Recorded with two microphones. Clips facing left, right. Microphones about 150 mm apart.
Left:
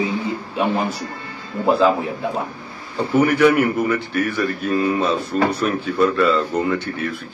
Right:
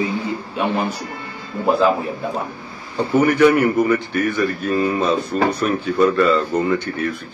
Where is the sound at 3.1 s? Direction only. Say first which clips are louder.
Right 1 dB; 5° left (ahead or behind).